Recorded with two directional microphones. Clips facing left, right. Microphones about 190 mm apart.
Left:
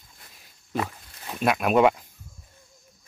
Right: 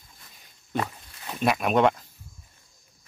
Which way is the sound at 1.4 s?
Centre (ahead or behind).